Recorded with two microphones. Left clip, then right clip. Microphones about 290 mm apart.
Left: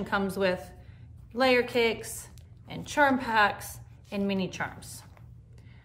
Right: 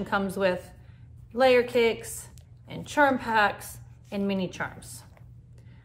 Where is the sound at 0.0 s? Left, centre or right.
Centre.